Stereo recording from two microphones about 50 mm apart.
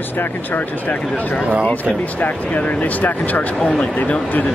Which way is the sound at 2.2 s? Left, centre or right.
Left.